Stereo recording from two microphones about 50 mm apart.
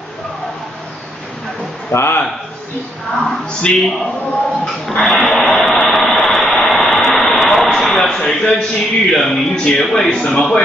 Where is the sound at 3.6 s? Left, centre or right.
Centre.